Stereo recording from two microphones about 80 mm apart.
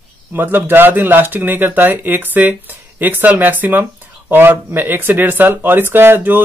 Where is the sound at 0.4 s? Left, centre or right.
Right.